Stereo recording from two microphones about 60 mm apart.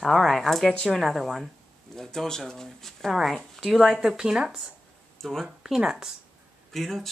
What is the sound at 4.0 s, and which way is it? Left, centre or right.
Speech, centre.